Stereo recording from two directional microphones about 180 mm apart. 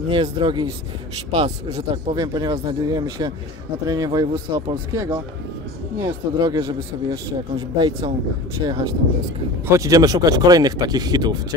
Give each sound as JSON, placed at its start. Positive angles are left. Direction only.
{"t": 0.1, "sound": "a man's voice", "side_deg": -30}